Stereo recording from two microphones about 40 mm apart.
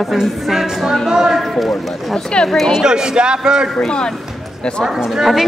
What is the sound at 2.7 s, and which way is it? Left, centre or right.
A man's voice, centre.